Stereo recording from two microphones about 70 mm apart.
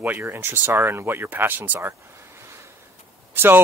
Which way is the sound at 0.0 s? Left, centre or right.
Right.